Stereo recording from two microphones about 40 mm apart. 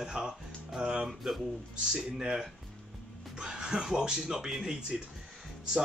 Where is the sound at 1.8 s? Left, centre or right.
Centre.